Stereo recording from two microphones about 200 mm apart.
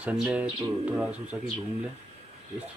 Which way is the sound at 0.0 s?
5° right (ahead or behind).